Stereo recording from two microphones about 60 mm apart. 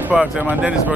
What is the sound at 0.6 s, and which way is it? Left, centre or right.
Speech, centre.